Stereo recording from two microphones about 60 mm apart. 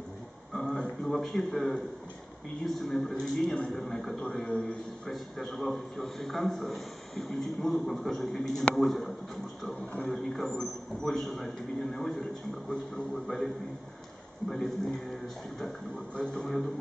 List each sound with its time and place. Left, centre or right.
0.5 s a sound: centre
1.1 s a man's voice: centre
4.3 s a man's voice: centre
5.0 s a man's voice: centre
14.5 s a man's voice: centre
16.2 s a man's voice: centre